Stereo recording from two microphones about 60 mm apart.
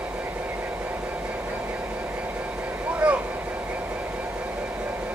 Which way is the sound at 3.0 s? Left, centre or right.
Centre.